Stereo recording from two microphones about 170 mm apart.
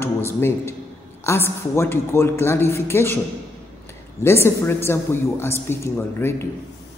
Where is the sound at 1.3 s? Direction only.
15° left (ahead or behind).